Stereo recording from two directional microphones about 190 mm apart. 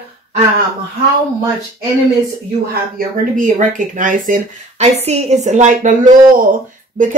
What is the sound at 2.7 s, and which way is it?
Speech, 50° right (ahead or behind).